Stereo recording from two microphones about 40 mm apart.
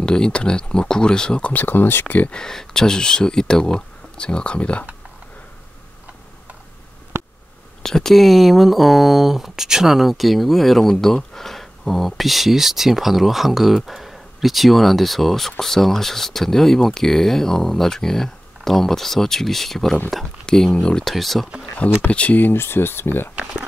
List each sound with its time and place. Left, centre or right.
0.0 s speech: left
1.5 s speech: left
2.0 s speech: left
2.3 s speech: centre; by 4.8 s left
7.8 s speech: centre
20.7 s speech: left
21.0 s speech: centre
22.0 s speech: left
22.4 s speech: left